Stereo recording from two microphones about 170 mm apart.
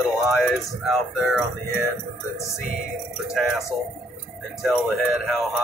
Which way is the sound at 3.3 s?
Centre (ahead or behind).